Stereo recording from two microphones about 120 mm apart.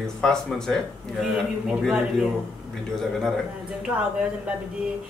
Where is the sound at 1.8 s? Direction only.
5° right (ahead or behind).